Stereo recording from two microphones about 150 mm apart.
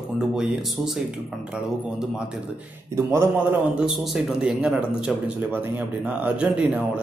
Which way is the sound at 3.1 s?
15° right (ahead or behind).